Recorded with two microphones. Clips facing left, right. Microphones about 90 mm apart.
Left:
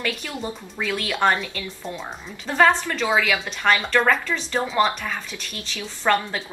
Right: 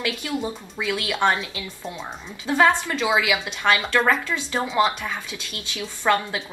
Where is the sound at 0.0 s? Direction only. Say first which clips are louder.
Right 2 dB; 10° right (ahead or behind).